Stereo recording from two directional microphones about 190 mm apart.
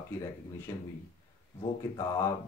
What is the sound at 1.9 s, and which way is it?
Speech, 15° left (ahead or behind).